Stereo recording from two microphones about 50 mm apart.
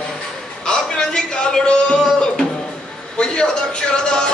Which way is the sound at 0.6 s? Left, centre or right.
Centre.